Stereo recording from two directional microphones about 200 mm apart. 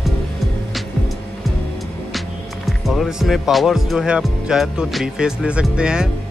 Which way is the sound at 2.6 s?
Centre (ahead or behind).